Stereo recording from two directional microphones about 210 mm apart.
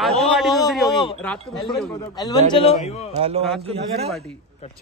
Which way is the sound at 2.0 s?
15° left (ahead or behind).